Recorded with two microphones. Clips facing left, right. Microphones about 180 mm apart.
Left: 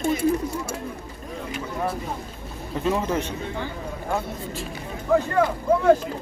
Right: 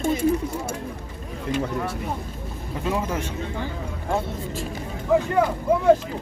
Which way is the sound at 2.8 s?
10° right (ahead or behind).